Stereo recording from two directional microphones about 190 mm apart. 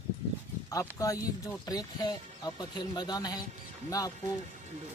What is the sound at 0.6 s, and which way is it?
Speech, 15° left (ahead or behind).